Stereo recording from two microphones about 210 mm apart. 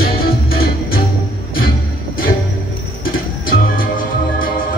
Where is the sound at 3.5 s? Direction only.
40° left (ahead or behind).